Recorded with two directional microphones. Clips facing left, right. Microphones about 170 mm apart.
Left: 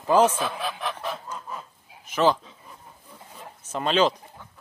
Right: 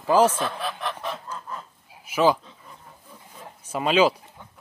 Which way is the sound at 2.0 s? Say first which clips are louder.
Right 1 dB; 10° right (ahead or behind).